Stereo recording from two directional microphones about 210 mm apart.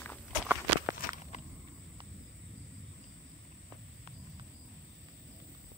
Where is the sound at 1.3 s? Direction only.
35° left (ahead or behind).